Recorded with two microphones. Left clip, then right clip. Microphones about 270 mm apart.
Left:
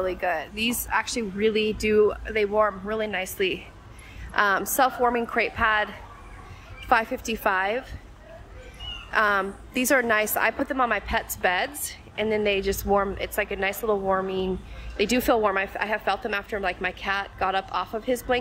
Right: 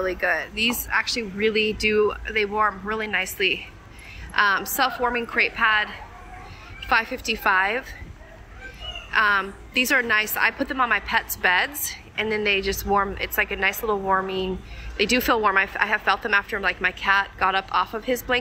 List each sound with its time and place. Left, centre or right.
0.0 s a woman's voice: centre
9.1 s a woman's voice: centre